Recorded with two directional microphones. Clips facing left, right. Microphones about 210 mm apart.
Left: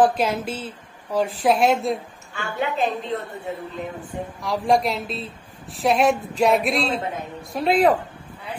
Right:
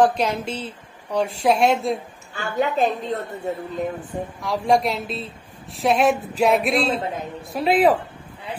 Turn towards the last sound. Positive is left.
turn(degrees=0)  # may be behind; listen again after turning